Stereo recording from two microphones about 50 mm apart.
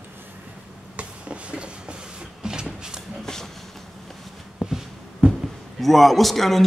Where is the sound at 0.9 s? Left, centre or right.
Right.